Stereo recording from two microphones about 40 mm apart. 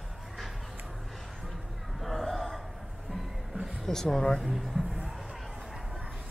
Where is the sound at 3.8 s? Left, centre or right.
Centre.